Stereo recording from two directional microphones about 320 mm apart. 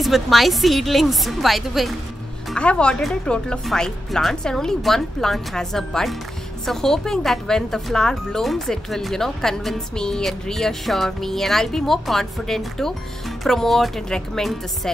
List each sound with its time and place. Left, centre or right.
0.0 s speech: centre